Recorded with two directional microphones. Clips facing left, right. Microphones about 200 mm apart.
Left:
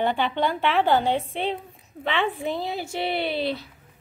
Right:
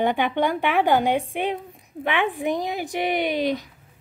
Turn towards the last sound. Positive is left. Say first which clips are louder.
# right 3 dB
turn(degrees=-15)  # may be behind; listen again after turning